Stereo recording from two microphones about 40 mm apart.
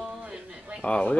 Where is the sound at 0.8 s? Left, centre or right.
Left.